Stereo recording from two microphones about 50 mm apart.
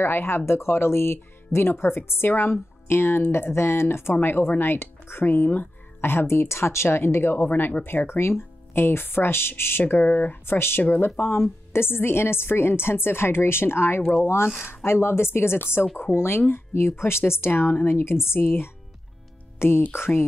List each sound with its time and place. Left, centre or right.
0.0 s speech: left
10.4 s speech: left
19.9 s speech: left